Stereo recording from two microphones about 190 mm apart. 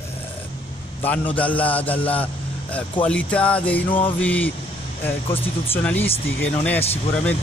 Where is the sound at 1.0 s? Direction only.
10° left (ahead or behind).